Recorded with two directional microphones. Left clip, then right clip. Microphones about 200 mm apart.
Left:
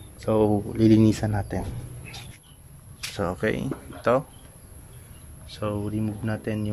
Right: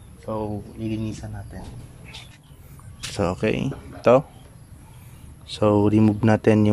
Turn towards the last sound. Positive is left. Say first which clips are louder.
# right 12 dB
turn(degrees=-30)  # may be behind; listen again after turning